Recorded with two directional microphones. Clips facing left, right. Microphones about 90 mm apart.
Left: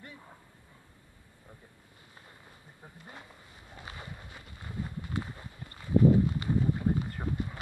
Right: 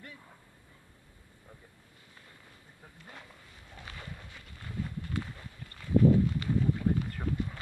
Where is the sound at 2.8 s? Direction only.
15° left (ahead or behind).